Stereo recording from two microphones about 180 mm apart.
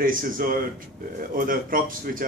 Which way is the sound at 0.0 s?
50° right (ahead or behind).